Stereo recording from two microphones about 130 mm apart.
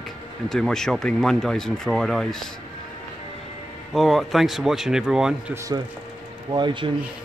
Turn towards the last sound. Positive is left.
turn(degrees=-35)  # may be behind; listen again after turning